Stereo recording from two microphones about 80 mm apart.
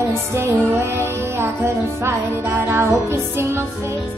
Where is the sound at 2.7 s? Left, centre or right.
Right.